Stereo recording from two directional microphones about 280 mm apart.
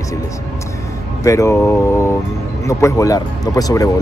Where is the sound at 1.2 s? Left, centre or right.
Centre.